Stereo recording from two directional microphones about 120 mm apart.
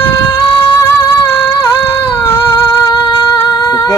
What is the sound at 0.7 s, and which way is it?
Music, 20° left (ahead or behind).